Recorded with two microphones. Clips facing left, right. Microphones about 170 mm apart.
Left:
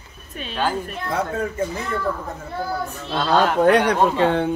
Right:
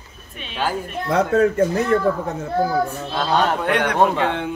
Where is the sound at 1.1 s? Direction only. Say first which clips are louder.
Right 8 dB; 75° right (ahead or behind).